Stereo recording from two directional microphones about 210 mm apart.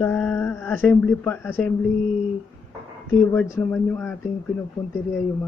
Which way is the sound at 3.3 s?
10° left (ahead or behind).